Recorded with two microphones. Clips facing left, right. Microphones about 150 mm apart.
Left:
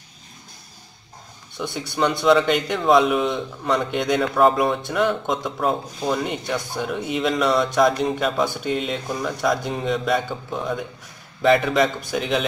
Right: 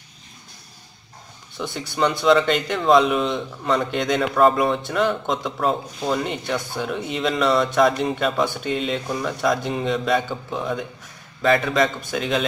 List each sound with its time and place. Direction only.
1.6 s speech: centre (ahead or behind)